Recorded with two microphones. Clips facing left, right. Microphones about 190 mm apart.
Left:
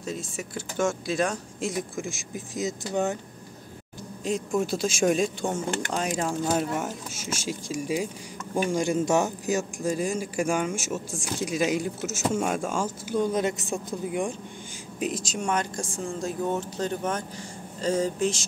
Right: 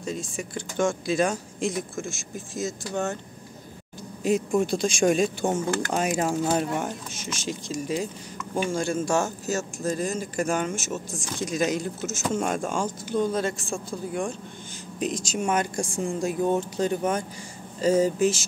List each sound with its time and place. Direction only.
0.0 s speech: 5° left (ahead or behind)
2.0 s speech: 15° left (ahead or behind)
4.2 s speech: 5° right (ahead or behind); by 14.3 s 15° left (ahead or behind)
15.0 s speech: 5° left (ahead or behind)